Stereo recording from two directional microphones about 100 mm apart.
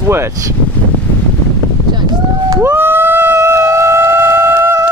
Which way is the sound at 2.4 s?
25° right (ahead or behind).